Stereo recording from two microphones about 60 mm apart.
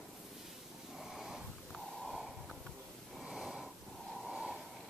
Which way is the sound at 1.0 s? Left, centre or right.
Centre.